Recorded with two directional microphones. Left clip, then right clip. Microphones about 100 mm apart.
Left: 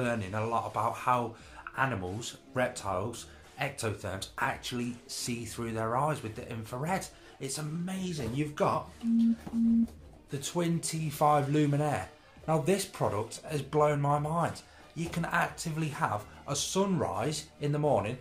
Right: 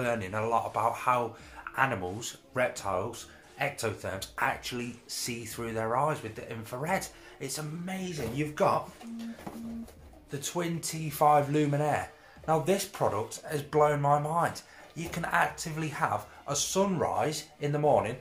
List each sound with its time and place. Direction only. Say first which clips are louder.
0.0 s speech: right 2 dB; 25° left (ahead or behind)
10.3 s speech: left 1 dB; 35° left (ahead or behind)